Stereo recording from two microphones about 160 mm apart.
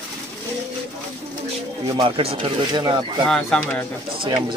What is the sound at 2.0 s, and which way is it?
Speech, 35° right (ahead or behind).